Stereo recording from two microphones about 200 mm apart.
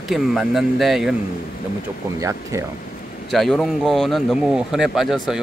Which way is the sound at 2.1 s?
15° right (ahead or behind).